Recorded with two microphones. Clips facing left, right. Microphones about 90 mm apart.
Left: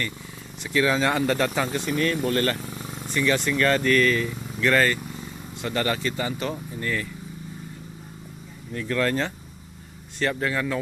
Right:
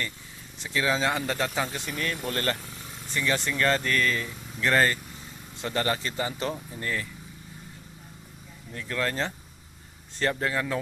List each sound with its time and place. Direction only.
0.7 s speech: 20° right (ahead or behind)
3.1 s speech: 25° right (ahead or behind)
8.7 s speech: 20° right (ahead or behind)